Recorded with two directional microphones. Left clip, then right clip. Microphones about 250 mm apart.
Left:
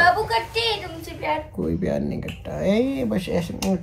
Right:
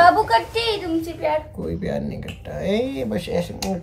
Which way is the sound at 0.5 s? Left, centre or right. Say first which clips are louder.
Right 2 dB; centre.